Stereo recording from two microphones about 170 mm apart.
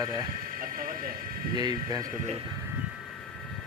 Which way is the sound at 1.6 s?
25° right (ahead or behind).